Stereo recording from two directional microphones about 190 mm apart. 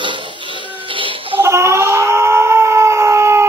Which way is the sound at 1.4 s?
15° right (ahead or behind).